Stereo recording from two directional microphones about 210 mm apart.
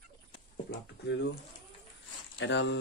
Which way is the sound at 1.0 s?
55° left (ahead or behind).